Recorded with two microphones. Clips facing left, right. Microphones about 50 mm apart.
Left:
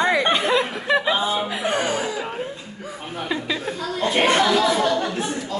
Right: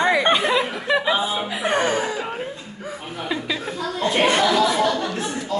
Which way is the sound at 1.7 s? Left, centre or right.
Right.